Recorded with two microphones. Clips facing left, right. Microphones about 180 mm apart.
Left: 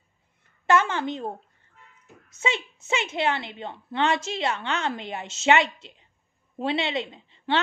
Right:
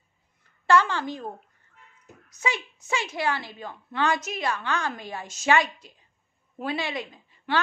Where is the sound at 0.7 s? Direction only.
20° left (ahead or behind).